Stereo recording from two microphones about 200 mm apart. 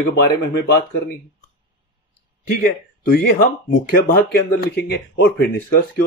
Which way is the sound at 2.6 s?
45° left (ahead or behind).